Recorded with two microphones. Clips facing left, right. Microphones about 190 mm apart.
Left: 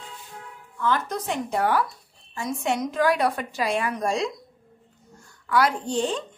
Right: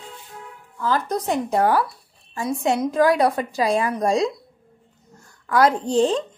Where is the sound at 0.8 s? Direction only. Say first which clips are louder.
Right 3 dB; 35° right (ahead or behind).